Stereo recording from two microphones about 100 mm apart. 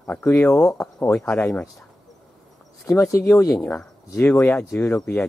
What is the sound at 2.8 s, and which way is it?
Speech, 30° left (ahead or behind).